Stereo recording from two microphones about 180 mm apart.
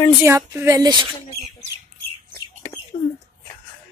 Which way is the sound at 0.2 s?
15° right (ahead or behind).